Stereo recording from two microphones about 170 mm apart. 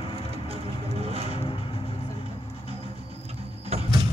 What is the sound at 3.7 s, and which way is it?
Sliding door, 40° right (ahead or behind).